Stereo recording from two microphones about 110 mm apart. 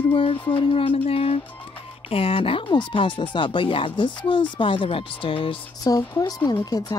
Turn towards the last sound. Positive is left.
turn(degrees=35)  # may be behind; listen again after turning